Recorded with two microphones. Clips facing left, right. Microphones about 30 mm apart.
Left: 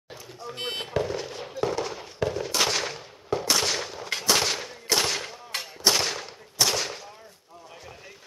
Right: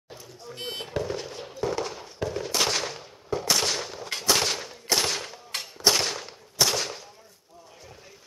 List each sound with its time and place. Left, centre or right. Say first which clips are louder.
0.6 s speech: left 3 dB; centre
1.0 s fireworks: left 1 dB; centre
1.7 s a sound: left 1 dB; centre
2.3 s gunshot: right 1 dB; centre